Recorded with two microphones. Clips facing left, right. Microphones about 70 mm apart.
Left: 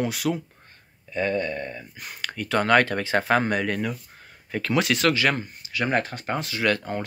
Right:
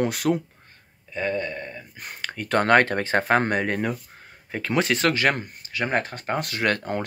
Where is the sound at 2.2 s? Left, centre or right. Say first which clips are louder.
Left 1 dB; right.